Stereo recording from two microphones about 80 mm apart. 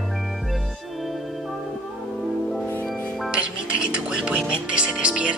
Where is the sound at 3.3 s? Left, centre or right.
Centre.